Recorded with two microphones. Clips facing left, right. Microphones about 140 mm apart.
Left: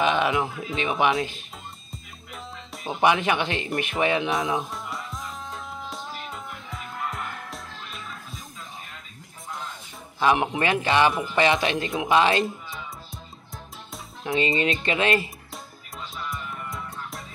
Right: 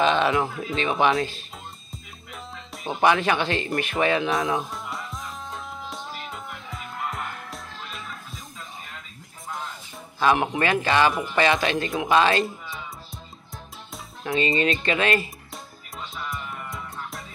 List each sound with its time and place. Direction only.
0.0 s speech: 15° left (ahead or behind)
1.9 s music: centre (ahead or behind)
3.0 s speech: 15° left (ahead or behind)
4.6 s music: centre (ahead or behind)
10.2 s speech: 20° left (ahead or behind)
12.6 s music: centre (ahead or behind)
14.2 s speech: 20° left (ahead or behind)
16.3 s music: centre (ahead or behind)